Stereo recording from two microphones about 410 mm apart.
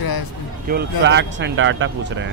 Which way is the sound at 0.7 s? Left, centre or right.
Right.